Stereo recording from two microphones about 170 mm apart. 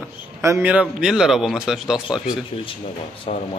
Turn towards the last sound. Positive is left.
turn(degrees=35)  # may be behind; listen again after turning